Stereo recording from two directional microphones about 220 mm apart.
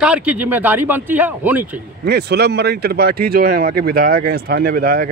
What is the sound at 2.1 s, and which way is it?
Speech, 45° right (ahead or behind).